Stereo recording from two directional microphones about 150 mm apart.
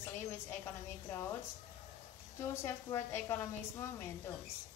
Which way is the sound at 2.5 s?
20° left (ahead or behind).